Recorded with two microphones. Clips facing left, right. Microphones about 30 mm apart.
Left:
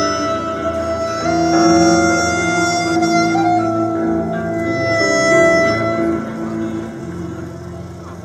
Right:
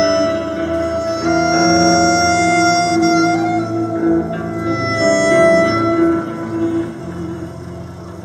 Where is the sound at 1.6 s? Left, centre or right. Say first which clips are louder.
Left 2 dB; right.